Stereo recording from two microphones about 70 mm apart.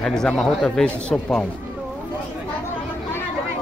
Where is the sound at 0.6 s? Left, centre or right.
Centre.